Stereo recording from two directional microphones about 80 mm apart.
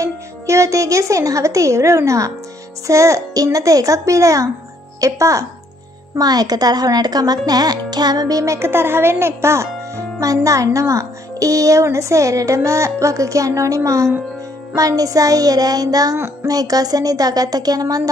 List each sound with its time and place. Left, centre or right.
0.0 s speech: right
2.9 s music: right
6.1 s speech: right
8.5 s speech: right
14.8 s music: right